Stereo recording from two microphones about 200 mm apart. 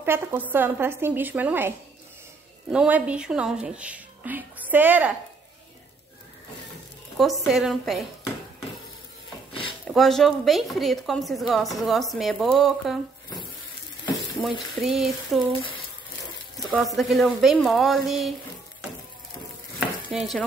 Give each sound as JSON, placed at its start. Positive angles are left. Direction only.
{"t": 0.0, "sound": "a woman's voice", "side_deg": -10}
{"t": 2.7, "sound": "a woman's voice", "side_deg": -5}
{"t": 7.2, "sound": "a woman's voice", "side_deg": 0}
{"t": 9.5, "sound": "a sound", "side_deg": 25}
{"t": 9.9, "sound": "a woman's voice", "side_deg": 0}
{"t": 14.8, "sound": "a woman's voice", "side_deg": 0}
{"t": 16.7, "sound": "a woman's voice", "side_deg": 0}
{"t": 20.1, "sound": "stir", "side_deg": -5}